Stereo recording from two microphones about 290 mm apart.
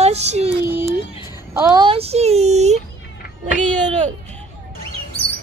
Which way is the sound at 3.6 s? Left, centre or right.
Right.